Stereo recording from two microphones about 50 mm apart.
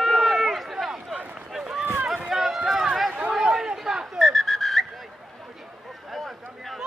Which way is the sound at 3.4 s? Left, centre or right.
Centre.